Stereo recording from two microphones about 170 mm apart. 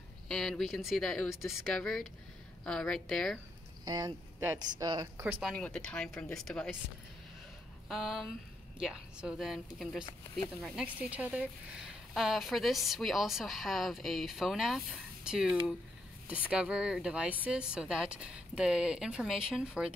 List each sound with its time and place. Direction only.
0.3 s a woman's voice: centre (ahead or behind)
3.8 s speech: 25° right (ahead or behind)
5.2 s speech: 10° right (ahead or behind)
5.5 s a woman's voice: 5° left (ahead or behind)
7.9 s a woman's voice: centre (ahead or behind)